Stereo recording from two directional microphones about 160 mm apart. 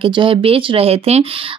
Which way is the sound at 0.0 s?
30° right (ahead or behind).